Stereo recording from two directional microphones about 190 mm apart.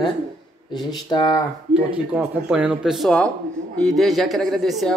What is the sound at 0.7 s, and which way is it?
Speech, 20° left (ahead or behind).